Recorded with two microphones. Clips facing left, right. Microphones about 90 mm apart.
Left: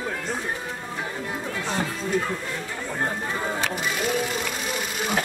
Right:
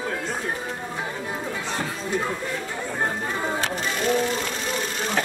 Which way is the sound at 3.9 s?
5° left (ahead or behind).